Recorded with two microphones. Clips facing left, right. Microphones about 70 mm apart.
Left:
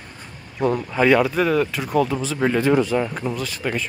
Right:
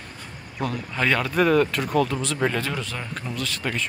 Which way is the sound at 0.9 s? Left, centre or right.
Centre.